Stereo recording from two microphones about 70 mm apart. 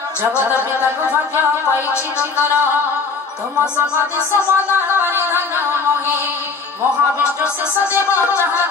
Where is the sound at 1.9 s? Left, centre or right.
Left.